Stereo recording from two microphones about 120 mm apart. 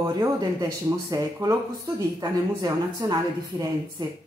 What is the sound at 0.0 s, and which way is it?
Speech, 30° right (ahead or behind).